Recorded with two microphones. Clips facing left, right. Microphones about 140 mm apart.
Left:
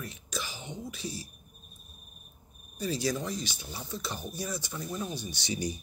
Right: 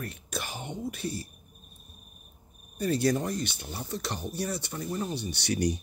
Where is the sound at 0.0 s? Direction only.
55° right (ahead or behind).